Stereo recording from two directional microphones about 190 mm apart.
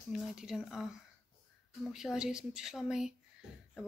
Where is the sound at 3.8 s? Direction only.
5° right (ahead or behind).